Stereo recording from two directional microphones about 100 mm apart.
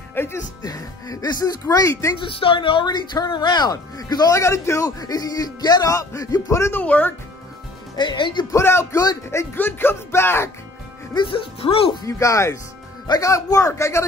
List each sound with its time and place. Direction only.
0.1 s speech: 25° left (ahead or behind)
0.6 s a woman's voice: 35° left (ahead or behind)
2.1 s a woman's voice: 60° left (ahead or behind); by 6.8 s 30° left (ahead or behind)
6.8 s speech: 15° left (ahead or behind)
7.9 s speech: 50° left (ahead or behind)
8.5 s speech: 25° left (ahead or behind)
11.1 s speech: 60° left (ahead or behind)
12.0 s a woman's voice: 30° left (ahead or behind)